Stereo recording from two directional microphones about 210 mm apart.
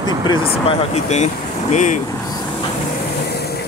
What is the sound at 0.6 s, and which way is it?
Speech, 30° left (ahead or behind).